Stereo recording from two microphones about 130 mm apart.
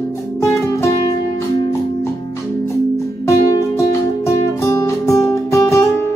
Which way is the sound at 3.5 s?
25° left (ahead or behind).